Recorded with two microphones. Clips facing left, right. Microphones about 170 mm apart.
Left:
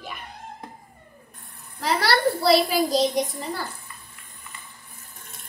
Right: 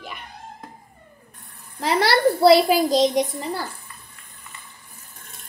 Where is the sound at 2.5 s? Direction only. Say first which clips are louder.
Right 3 dB; 65° right (ahead or behind).